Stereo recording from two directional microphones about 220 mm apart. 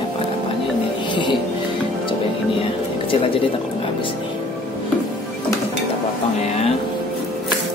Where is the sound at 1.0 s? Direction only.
20° left (ahead or behind).